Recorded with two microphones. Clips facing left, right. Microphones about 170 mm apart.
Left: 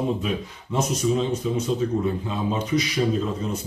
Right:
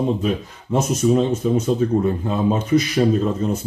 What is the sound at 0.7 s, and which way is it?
Speech, 50° right (ahead or behind).